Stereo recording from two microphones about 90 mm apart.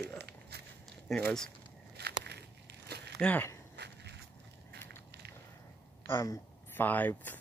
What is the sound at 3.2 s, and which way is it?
Speech, 20° left (ahead or behind).